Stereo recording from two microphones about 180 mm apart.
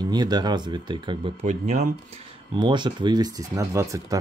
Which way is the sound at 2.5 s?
25° right (ahead or behind).